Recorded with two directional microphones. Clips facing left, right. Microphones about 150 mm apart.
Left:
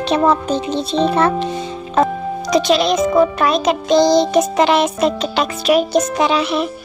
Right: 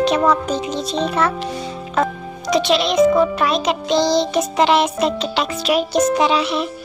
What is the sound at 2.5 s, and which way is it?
Music, 40° left (ahead or behind).